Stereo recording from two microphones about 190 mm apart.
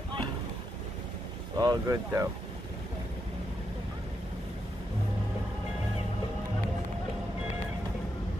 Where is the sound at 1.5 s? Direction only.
20° right (ahead or behind).